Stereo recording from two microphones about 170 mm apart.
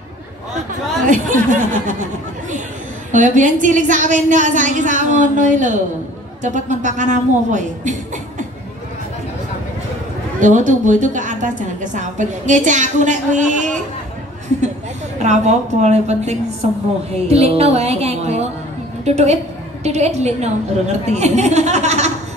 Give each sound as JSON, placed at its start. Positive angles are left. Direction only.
{"t": 1.0, "sound": "a woman's voice", "side_deg": -50}
{"t": 3.1, "sound": "a woman's voice", "side_deg": -50}
{"t": 10.4, "sound": "a woman's voice", "side_deg": -45}
{"t": 15.2, "sound": "music", "side_deg": -40}
{"t": 21.1, "sound": "speech", "side_deg": -40}